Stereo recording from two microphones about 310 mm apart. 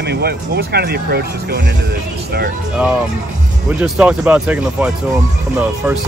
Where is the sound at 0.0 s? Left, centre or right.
Right.